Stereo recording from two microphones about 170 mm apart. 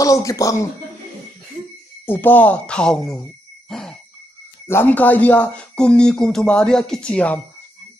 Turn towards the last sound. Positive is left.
turn(degrees=10)  # may be behind; listen again after turning